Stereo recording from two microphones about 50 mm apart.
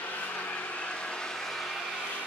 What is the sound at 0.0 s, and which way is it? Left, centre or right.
Vehicle, left.